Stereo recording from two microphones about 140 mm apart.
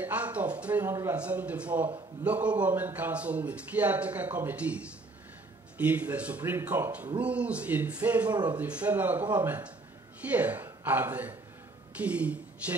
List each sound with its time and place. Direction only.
0.0 s a man's voice: 10° right (ahead or behind)
8.3 s speech: 30° right (ahead or behind)
8.5 s a man's voice: 10° right (ahead or behind)